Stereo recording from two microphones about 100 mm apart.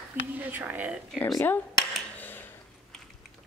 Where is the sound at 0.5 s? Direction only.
15° right (ahead or behind).